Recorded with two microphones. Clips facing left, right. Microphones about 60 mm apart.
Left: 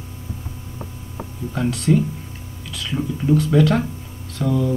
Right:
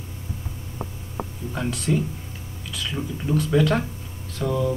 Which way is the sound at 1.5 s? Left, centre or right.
Centre.